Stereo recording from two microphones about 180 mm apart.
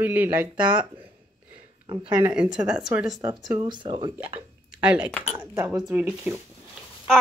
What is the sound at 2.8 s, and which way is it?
Speech, 5° right (ahead or behind).